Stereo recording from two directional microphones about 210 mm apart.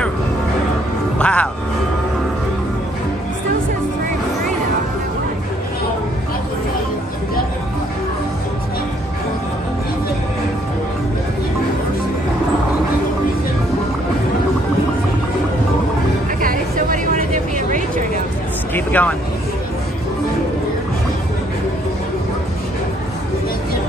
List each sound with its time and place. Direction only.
1.1 s music: 5° left (ahead or behind)
16.3 s a sound: 40° right (ahead or behind)
18.9 s vehicle: 10° left (ahead or behind)